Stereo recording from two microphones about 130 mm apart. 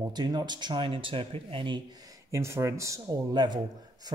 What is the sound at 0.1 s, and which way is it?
Speech, 30° right (ahead or behind).